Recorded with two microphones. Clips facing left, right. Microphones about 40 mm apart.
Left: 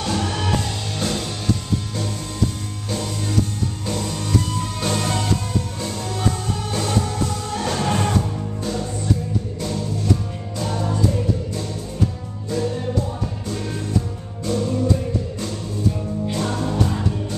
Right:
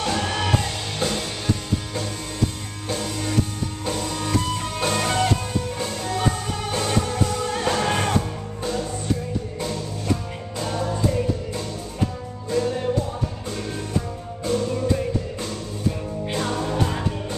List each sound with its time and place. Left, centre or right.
0.0 s music: centre
2.9 s music: centre
14.4 s music: right
16.3 s music: centre